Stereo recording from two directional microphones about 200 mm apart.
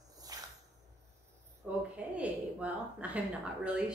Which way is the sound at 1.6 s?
5° right (ahead or behind).